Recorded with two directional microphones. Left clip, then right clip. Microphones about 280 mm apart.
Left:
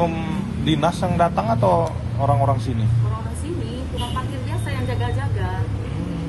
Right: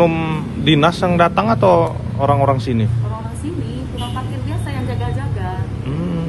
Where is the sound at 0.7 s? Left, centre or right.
Right.